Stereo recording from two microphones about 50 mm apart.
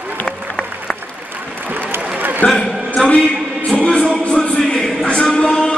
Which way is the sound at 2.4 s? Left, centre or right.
Left.